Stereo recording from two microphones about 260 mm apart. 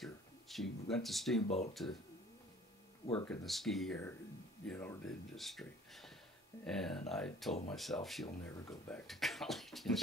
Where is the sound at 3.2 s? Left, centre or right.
Centre.